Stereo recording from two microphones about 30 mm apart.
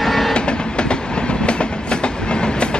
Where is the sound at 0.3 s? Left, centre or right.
Left.